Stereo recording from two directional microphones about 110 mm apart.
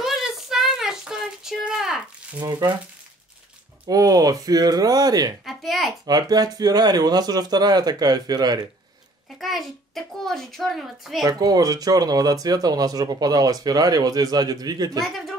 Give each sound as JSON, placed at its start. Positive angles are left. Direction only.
{"t": 0.0, "sound": "a sound", "side_deg": -5}
{"t": 3.8, "sound": "speech", "side_deg": -35}
{"t": 5.4, "sound": "a child's voice", "side_deg": 0}
{"t": 6.0, "sound": "speech", "side_deg": -35}
{"t": 9.4, "sound": "a child's voice", "side_deg": 0}
{"t": 11.2, "sound": "speech", "side_deg": -35}